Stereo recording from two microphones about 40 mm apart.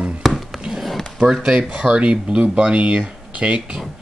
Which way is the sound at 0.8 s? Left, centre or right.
Centre.